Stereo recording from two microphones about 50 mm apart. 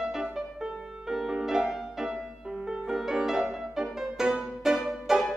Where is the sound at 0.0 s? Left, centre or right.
Centre.